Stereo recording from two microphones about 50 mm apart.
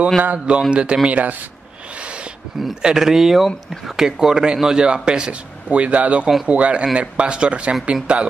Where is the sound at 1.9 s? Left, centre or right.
Right.